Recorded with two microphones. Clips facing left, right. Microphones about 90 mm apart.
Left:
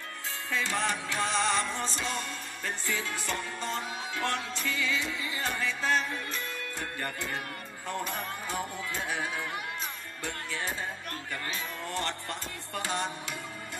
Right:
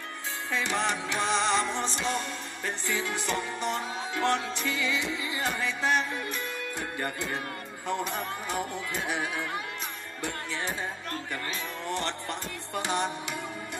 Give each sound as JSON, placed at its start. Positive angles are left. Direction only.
{"t": 0.5, "sound": "music", "side_deg": -20}
{"t": 8.0, "sound": "speech", "side_deg": -20}
{"t": 11.9, "sound": "speech", "side_deg": -20}